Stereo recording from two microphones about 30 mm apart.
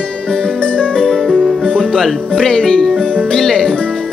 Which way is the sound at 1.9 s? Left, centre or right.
Centre.